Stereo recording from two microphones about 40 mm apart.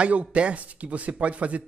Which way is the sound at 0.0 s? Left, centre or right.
Right.